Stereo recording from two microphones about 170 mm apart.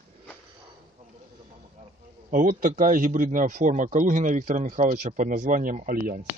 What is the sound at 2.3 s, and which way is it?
Speech, 55° right (ahead or behind).